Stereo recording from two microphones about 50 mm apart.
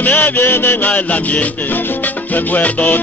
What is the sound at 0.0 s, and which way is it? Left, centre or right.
Salsa music, left.